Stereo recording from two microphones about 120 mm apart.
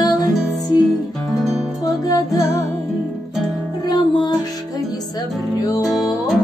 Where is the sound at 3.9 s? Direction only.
35° left (ahead or behind).